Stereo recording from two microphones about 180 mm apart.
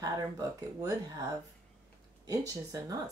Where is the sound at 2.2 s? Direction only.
20° right (ahead or behind).